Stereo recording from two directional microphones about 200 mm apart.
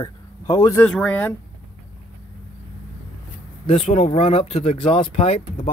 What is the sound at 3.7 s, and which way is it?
Speech, 30° left (ahead or behind).